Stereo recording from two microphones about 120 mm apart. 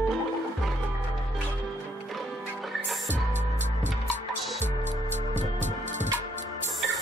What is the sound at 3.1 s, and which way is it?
Music, 80° right.